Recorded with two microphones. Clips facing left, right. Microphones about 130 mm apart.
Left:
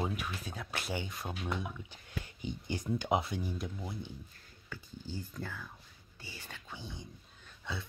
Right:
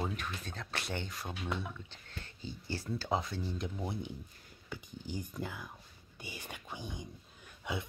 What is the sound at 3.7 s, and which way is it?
Speech, 20° right (ahead or behind).